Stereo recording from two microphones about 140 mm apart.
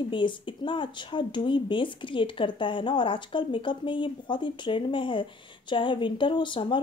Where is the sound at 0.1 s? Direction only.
35° left (ahead or behind).